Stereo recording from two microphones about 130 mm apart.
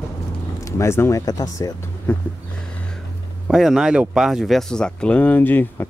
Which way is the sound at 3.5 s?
5° right (ahead or behind).